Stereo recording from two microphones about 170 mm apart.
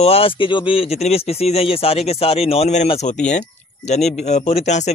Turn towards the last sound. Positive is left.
turn(degrees=40)  # may be behind; listen again after turning